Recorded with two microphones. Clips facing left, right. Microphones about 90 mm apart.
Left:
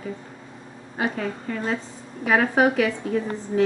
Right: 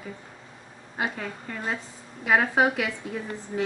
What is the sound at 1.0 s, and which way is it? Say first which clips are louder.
A woman's voice: left 5 dB; 10° right (ahead or behind).